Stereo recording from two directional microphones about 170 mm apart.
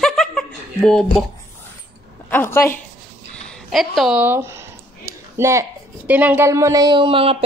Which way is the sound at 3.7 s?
Centre (ahead or behind).